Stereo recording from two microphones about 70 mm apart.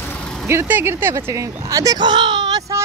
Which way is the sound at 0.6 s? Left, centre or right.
Right.